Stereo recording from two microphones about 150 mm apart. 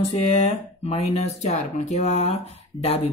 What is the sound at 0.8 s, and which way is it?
Mantra, 45° left (ahead or behind).